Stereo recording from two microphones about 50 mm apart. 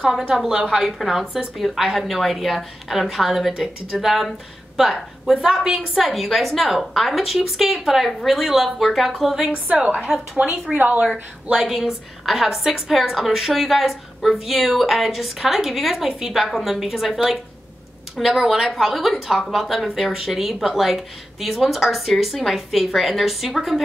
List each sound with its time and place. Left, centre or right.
0.3 s a woman's voice: centre
1.6 s a woman's voice: centre
9.4 s a woman's voice: centre
11.5 s a woman's voice: centre